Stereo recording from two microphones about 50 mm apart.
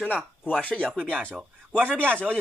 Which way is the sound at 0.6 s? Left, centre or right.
Left.